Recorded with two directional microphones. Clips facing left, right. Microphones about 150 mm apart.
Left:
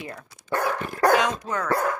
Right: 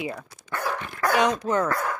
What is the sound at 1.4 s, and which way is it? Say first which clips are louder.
Speech: right 5 dB; 25° right (ahead or behind).